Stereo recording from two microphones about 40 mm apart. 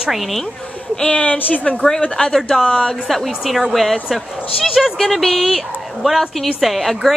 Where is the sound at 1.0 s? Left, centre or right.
Left.